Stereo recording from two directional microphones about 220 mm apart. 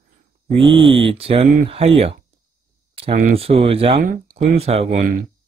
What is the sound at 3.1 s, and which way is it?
Speech, 40° right (ahead or behind).